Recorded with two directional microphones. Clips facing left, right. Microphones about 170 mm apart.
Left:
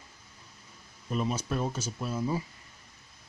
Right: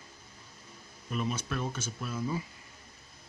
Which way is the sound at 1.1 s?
35° left (ahead or behind).